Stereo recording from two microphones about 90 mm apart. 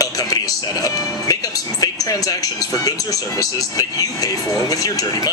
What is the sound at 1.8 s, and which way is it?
Speech, 40° left (ahead or behind).